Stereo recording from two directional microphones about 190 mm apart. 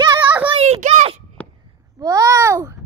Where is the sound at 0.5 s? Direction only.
35° right (ahead or behind).